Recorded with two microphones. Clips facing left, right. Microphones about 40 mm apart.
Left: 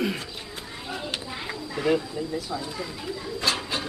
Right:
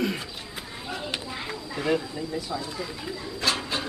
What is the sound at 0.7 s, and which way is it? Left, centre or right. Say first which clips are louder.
Children playing: even; centre.